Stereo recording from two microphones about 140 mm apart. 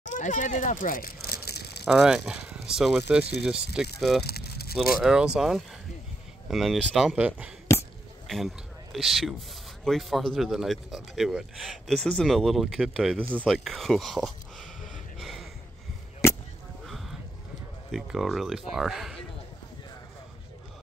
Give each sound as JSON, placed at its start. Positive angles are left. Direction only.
{"t": 0.0, "sound": "a child's voice", "side_deg": 60}
{"t": 1.9, "sound": "speech", "side_deg": 0}
{"t": 8.9, "sound": "speech", "side_deg": 0}
{"t": 13.7, "sound": "speech", "side_deg": 0}
{"t": 15.1, "sound": "a sound", "side_deg": 0}
{"t": 16.8, "sound": "a sound", "side_deg": 0}
{"t": 17.9, "sound": "speech", "side_deg": 0}